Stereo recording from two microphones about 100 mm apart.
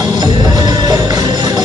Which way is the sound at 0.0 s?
40° right (ahead or behind).